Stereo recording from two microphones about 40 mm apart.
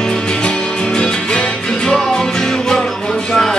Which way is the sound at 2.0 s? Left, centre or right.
Centre.